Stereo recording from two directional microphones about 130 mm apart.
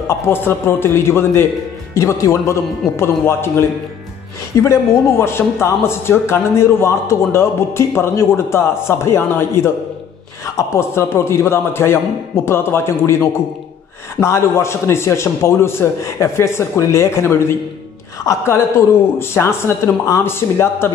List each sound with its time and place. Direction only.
0.2 s a man's voice: 20° left (ahead or behind)
4.6 s a man's voice: 20° left (ahead or behind)